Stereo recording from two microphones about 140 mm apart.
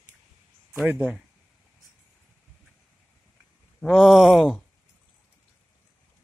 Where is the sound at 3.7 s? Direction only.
Centre (ahead or behind).